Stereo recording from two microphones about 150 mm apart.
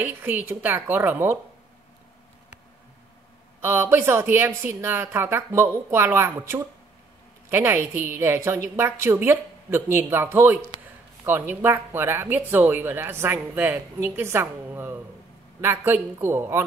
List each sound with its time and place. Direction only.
0.0 s speech: 15° right (ahead or behind)
3.6 s speech: 15° right (ahead or behind)